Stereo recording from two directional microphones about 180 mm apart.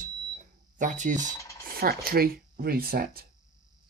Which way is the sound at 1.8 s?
55° right (ahead or behind).